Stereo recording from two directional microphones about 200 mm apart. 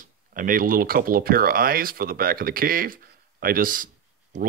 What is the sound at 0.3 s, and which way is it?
Speech, 45° right (ahead or behind).